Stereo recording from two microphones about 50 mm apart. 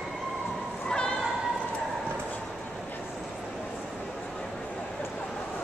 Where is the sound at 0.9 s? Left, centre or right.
Centre.